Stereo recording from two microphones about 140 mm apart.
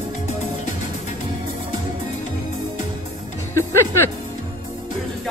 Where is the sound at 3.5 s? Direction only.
20° left (ahead or behind).